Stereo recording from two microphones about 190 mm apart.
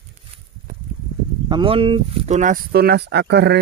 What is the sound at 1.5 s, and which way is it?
Speech, 25° right (ahead or behind).